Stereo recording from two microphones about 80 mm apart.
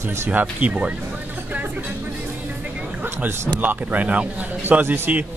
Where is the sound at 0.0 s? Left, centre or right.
Right.